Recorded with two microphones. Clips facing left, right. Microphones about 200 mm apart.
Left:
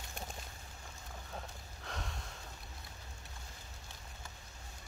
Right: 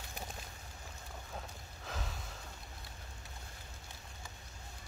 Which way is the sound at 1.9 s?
Centre (ahead or behind).